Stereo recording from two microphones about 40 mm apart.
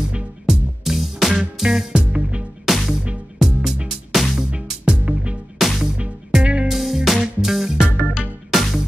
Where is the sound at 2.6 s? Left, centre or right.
Centre.